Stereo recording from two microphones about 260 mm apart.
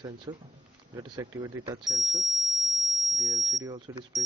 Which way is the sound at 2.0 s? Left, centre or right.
Centre.